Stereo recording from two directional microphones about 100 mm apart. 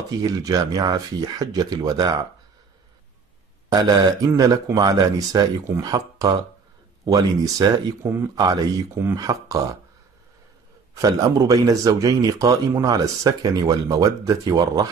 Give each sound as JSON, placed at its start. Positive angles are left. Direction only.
{"t": 0.2, "sound": "a man's voice", "side_deg": -40}
{"t": 3.7, "sound": "a man's voice", "side_deg": -40}
{"t": 11.0, "sound": "a man's voice", "side_deg": -40}